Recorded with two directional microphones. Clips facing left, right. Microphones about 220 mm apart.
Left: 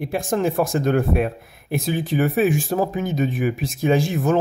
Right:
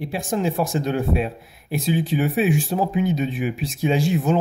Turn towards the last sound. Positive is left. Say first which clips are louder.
# left 1 dB
turn(degrees=50)  # may be behind; listen again after turning